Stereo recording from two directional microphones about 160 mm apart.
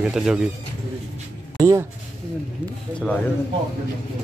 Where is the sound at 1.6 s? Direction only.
20° right (ahead or behind).